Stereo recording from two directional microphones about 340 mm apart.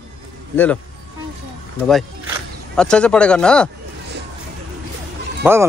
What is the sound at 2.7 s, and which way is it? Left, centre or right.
Speech, centre.